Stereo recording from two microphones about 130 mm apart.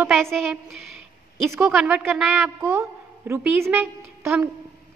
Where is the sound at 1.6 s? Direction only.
10° right (ahead or behind).